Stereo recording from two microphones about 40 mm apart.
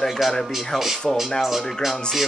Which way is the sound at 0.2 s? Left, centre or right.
Centre.